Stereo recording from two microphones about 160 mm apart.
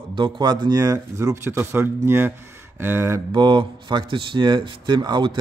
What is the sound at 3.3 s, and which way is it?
Speech, 30° right (ahead or behind).